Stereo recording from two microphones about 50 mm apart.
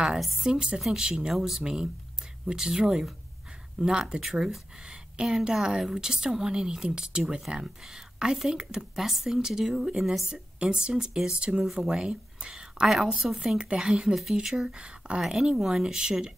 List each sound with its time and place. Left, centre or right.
0.5 s speech: centre
13.6 s speech: centre